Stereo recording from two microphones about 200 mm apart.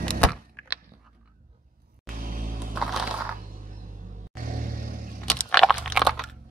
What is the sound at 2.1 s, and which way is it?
Music, 45° right (ahead or behind).